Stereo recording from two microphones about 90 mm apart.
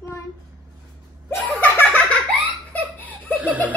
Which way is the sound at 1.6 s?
15° left (ahead or behind).